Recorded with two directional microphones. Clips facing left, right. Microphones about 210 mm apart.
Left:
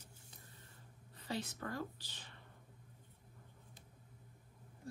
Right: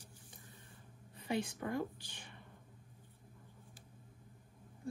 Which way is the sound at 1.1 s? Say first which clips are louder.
Right 5 dB; 15° right (ahead or behind).